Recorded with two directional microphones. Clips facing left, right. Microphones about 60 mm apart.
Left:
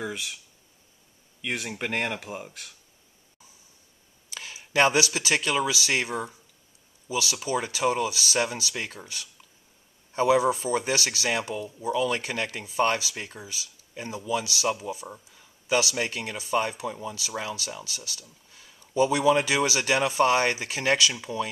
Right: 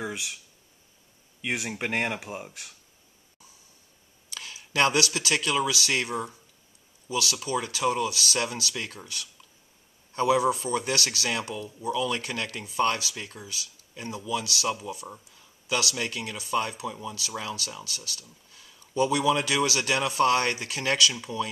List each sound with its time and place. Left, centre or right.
0.0 s a sound: centre
1.4 s speech: centre
4.3 s speech: left